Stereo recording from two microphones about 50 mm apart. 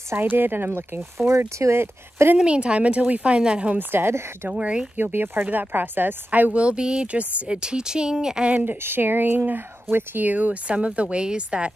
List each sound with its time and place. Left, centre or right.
0.2 s speech: right
2.3 s a woman's voice: right
3.7 s speech: right
4.6 s a woman's voice: right
4.9 s speech: right
6.5 s a woman's voice: right
7.5 s speech: centre
8.6 s a woman's voice: right; by 11.7 s centre